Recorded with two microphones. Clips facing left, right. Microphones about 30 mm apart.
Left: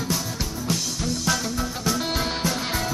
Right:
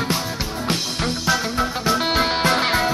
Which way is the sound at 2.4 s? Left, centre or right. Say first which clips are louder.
Right 8 dB; right.